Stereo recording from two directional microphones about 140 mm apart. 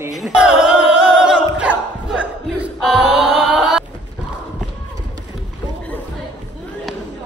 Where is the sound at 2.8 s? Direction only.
5° left (ahead or behind).